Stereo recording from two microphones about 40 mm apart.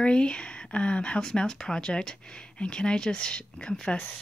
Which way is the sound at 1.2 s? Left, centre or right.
Centre.